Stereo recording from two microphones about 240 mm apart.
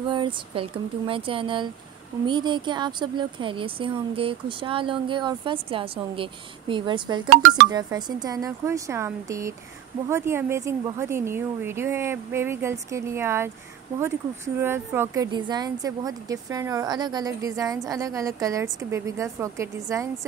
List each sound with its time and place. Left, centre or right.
0.1 s speech: right